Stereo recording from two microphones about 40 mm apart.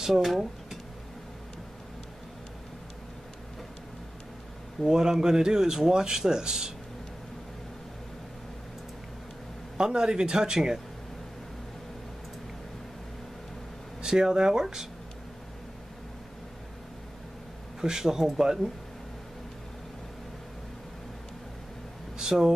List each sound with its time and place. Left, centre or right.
0.0 s speech: centre
4.8 s speech: centre
9.8 s speech: centre
14.0 s speech: centre
17.7 s speech: centre
22.3 s speech: centre